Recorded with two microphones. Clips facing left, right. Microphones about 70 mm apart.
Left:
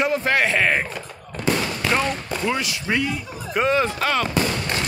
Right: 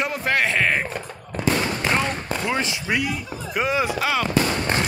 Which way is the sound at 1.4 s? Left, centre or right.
Centre.